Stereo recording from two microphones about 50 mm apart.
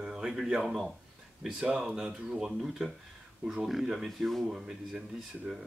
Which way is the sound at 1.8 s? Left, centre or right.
Centre.